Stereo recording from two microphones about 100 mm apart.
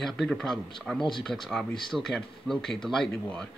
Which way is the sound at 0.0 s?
5° left (ahead or behind).